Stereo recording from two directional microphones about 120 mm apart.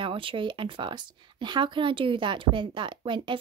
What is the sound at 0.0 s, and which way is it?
Speech, 45° right (ahead or behind).